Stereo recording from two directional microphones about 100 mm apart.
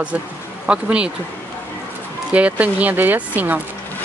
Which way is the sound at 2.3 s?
15° right (ahead or behind).